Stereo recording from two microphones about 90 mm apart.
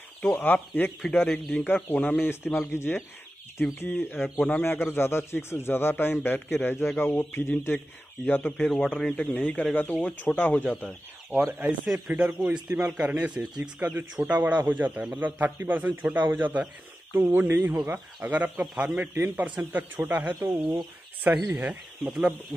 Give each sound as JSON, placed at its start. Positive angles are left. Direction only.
{"t": 0.2, "sound": "a man's voice", "side_deg": 20}
{"t": 10.5, "sound": "speech", "side_deg": 10}
{"t": 11.2, "sound": "a man's voice", "side_deg": -20}
{"t": 13.4, "sound": "speech", "side_deg": 0}
{"t": 14.4, "sound": "a man's voice", "side_deg": -20}